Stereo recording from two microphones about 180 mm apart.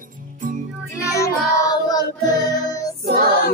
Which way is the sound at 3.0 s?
60° right (ahead or behind).